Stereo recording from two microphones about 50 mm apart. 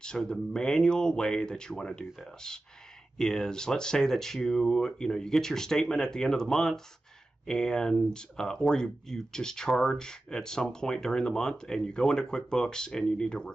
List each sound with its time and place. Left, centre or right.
0.0 s speech: centre